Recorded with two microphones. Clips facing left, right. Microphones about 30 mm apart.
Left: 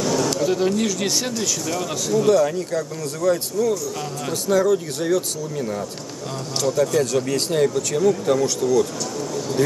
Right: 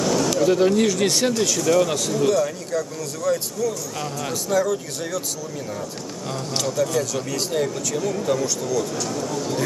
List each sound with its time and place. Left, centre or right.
0.0 s a sound: centre
0.4 s speech: centre
2.2 s speech: centre
6.6 s speech: left
7.5 s speech: centre